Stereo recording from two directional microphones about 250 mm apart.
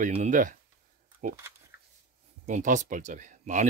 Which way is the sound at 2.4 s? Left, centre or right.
Right.